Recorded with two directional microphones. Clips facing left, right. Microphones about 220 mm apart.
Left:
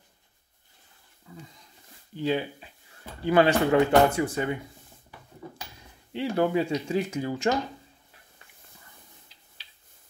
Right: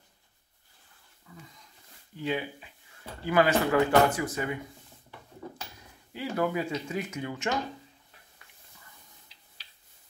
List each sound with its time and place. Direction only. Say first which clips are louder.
1.3 s a sound: left 5 dB; 30° left (ahead or behind)
2.1 s speech: left 4 dB; 35° left (ahead or behind)
6.1 s speech: left 5 dB; 30° left (ahead or behind)